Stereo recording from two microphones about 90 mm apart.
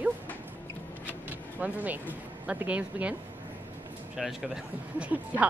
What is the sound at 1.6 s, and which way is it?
Speech, 15° right (ahead or behind).